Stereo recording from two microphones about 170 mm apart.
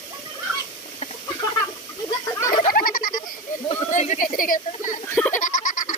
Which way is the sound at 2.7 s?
60° left (ahead or behind).